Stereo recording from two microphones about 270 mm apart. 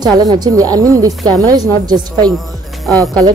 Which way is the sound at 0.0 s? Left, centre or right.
Centre.